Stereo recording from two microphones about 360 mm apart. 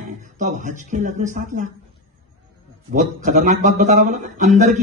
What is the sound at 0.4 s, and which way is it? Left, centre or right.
A man's voice, right.